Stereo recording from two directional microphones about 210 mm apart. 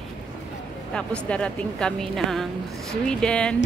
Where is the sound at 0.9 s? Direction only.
5° left (ahead or behind).